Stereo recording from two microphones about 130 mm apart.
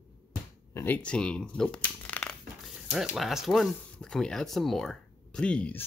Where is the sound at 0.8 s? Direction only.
10° left (ahead or behind).